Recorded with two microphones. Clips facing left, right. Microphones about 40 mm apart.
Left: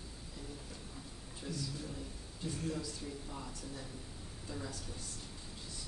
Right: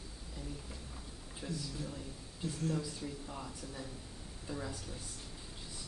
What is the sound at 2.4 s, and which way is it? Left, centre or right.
Speech, centre.